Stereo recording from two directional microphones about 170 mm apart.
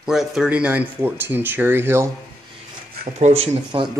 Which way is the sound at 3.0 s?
45° right (ahead or behind).